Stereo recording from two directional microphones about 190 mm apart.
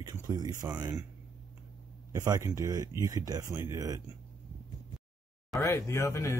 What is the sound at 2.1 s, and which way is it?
Speech, 15° right (ahead or behind).